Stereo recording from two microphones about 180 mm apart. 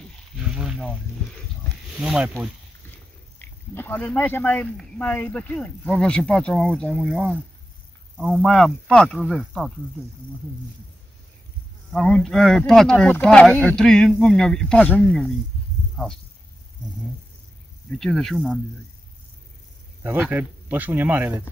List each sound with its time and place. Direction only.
0.6 s a sound: centre (ahead or behind)
2.0 s speech: centre (ahead or behind)
3.3 s speech: 10° left (ahead or behind)
8.2 s speech: centre (ahead or behind)
11.9 s speech: 5° left (ahead or behind)
17.9 s speech: centre (ahead or behind)
20.0 s speech: 10° right (ahead or behind)